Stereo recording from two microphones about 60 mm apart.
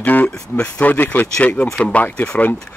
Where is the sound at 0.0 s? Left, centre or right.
Left.